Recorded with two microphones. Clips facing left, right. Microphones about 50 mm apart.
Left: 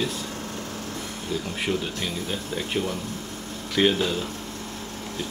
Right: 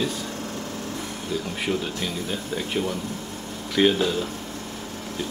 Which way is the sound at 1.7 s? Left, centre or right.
Centre.